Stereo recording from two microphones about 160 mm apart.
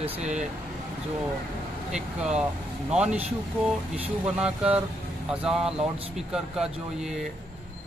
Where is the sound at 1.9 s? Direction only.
5° right (ahead or behind).